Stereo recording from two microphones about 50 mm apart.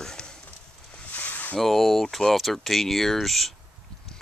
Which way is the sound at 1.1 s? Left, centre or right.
Left.